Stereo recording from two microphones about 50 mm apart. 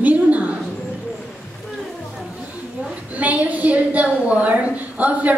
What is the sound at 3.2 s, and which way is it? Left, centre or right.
A woman's voice, right.